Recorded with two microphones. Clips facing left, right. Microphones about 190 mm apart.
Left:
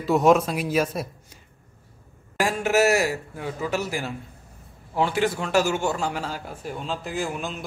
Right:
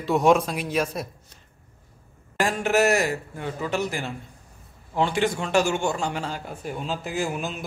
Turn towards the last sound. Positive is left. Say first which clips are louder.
# right 1 dB
turn(degrees=-5)  # may be behind; listen again after turning